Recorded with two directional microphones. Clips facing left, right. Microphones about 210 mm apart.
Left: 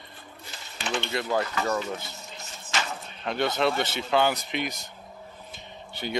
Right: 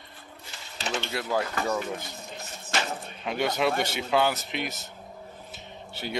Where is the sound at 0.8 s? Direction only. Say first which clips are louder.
Left 1 dB; 40° right (ahead or behind).